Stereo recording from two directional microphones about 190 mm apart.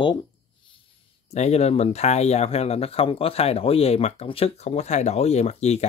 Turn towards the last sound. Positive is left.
turn(degrees=35)  # may be behind; listen again after turning